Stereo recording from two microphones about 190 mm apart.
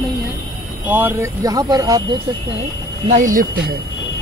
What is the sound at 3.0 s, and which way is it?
Speech, 40° right (ahead or behind).